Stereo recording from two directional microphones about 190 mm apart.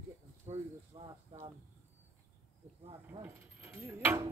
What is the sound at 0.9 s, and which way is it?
Speech, 25° right (ahead or behind).